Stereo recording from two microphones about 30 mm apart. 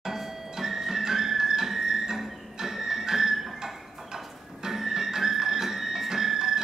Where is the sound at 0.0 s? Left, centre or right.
Centre.